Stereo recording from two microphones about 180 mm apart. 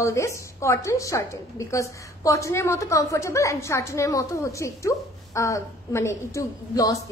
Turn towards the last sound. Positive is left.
turn(degrees=20)  # may be behind; listen again after turning